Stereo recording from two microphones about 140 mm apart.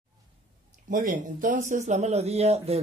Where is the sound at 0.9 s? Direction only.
70° right (ahead or behind); by 2.7 s 50° right (ahead or behind).